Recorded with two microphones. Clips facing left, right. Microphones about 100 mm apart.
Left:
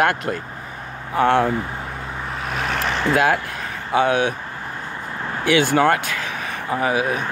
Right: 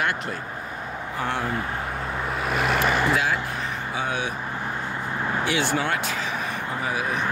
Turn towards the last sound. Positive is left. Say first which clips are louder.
# left 6 dB
turn(degrees=65)  # may be behind; listen again after turning